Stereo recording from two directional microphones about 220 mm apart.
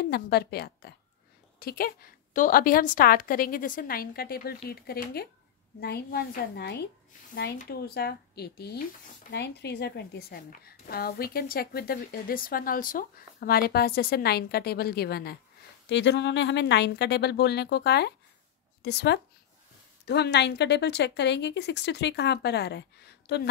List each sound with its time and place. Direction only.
0.0 s a woman's voice: 45° left (ahead or behind)